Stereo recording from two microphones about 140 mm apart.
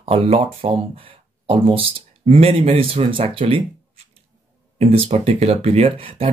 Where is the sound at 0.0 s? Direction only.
45° right (ahead or behind).